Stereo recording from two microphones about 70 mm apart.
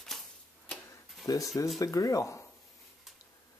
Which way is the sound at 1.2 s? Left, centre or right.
Left.